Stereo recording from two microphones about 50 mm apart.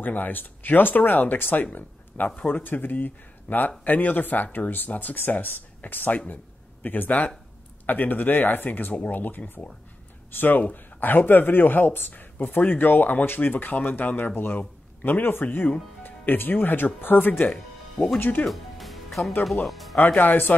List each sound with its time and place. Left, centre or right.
0.0 s speech: left
17.3 s speech: left
17.9 s speech: centre
18.5 s music: centre
19.4 s speech: centre
20.2 s speech: left